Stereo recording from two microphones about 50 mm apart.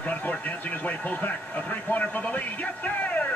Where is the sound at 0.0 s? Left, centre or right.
Left.